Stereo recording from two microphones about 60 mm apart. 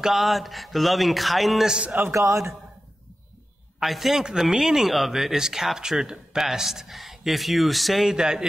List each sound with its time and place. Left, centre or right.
0.0 s speech: centre
2.1 s a man's voice: right
3.8 s speech: centre